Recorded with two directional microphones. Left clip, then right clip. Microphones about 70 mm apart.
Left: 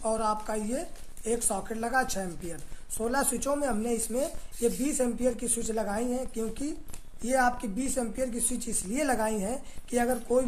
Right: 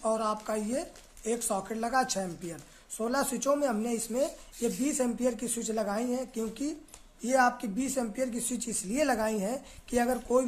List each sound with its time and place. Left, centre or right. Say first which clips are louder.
0.0 s speech: left 1 dB; right
3.0 s speech: left 1 dB; centre